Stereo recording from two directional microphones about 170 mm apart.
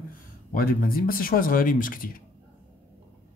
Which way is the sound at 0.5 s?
55° left (ahead or behind).